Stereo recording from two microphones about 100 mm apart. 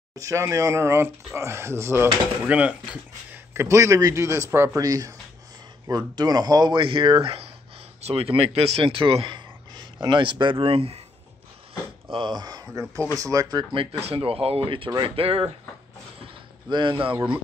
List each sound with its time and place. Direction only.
0.1 s speech: 30° right (ahead or behind)
2.4 s speech: 15° right (ahead or behind)
3.5 s speech: 30° right (ahead or behind)
6.8 s speech: 60° right (ahead or behind)
12.1 s speech: 50° right (ahead or behind)
14.0 s speech: 75° right (ahead or behind)
16.6 s speech: 50° right (ahead or behind)